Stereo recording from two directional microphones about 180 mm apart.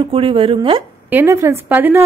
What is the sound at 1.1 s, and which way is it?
Speech, 10° right (ahead or behind).